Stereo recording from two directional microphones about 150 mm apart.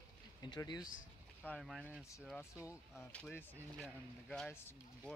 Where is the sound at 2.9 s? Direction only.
10° left (ahead or behind).